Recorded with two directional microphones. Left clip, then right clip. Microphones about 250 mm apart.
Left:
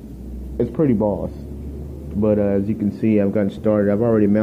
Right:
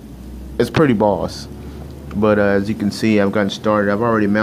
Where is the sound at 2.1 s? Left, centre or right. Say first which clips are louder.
Right 4 dB; centre.